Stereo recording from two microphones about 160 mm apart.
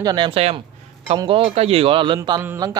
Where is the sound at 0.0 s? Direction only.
30° right (ahead or behind).